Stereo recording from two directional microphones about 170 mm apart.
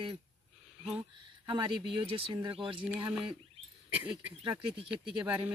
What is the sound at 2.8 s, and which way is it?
Speech, 5° right (ahead or behind).